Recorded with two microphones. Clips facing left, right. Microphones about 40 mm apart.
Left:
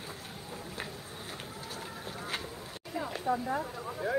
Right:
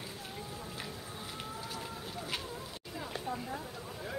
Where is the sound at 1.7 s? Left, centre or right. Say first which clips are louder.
Left 1 dB; left.